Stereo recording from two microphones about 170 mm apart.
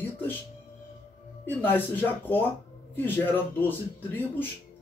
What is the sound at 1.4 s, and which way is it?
Speech, 10° left (ahead or behind).